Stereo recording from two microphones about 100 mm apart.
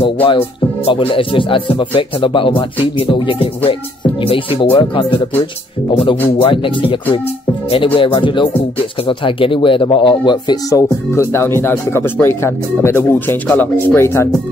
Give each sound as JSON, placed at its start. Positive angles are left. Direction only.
{"t": 0.0, "sound": "speech", "side_deg": 60}
{"t": 10.7, "sound": "speech", "side_deg": 30}